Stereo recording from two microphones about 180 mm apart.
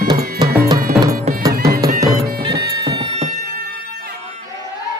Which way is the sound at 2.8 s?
35° right (ahead or behind).